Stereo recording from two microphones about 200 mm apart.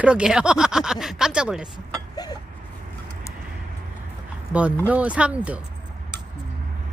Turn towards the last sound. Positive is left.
turn(degrees=-5)  # may be behind; listen again after turning